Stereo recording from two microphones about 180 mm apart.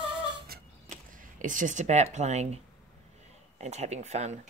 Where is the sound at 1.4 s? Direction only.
45° right (ahead or behind).